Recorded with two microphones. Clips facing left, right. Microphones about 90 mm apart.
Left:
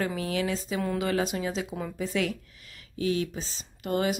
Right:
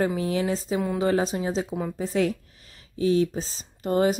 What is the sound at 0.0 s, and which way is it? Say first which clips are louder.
Speech: right 4 dB; 30° right (ahead or behind).